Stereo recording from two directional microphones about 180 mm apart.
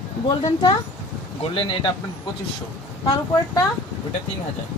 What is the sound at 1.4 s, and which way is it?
Speech, 30° left (ahead or behind).